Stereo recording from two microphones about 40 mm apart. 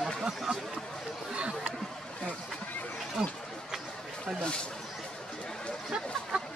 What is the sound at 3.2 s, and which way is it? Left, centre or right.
Speech, right.